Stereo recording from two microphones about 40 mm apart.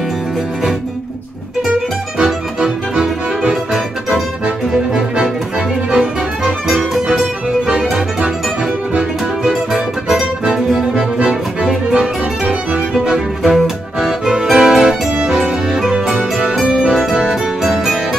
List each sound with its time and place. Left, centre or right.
2.1 s music: centre
5.9 s music: centre
9.5 s music: centre
11.0 s music: right
13.4 s music: centre
17.3 s music: centre